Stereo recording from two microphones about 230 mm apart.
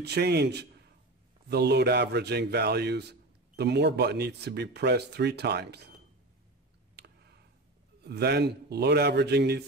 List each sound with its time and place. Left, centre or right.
0.0 s a man's voice: right
7.0 s clicking: right
8.0 s a man's voice: right